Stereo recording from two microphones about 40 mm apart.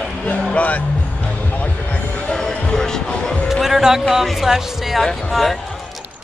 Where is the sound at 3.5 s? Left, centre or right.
Centre.